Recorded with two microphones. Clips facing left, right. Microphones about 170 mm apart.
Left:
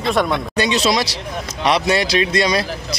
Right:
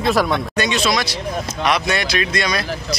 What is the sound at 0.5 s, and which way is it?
Speech, 35° left (ahead or behind).